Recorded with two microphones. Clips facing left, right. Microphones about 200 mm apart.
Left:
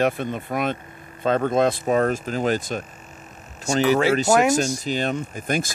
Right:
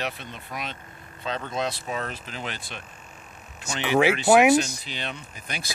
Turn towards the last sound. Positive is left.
turn(degrees=50)  # may be behind; listen again after turning